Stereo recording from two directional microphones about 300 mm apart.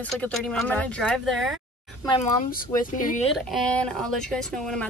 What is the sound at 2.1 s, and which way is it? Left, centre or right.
Speech, left.